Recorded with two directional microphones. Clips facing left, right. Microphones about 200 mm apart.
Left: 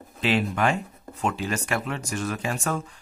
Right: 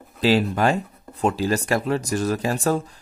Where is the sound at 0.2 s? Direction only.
35° right (ahead or behind).